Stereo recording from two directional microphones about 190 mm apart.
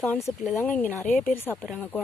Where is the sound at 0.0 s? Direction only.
10° left (ahead or behind).